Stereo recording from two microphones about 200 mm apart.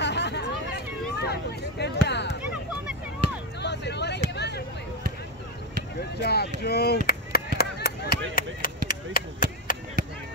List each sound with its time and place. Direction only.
0.0 s hubbub: 60° left (ahead or behind)
3.6 s vehicle: 60° left (ahead or behind)
4.3 s a sound: 55° left (ahead or behind)
5.9 s chop: 55° left (ahead or behind)